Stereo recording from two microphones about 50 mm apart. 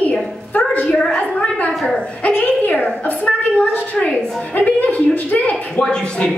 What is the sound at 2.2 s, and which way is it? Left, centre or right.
A woman's voice, left.